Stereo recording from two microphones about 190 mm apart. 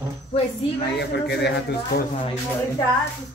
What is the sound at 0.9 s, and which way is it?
Speech, 60° left (ahead or behind).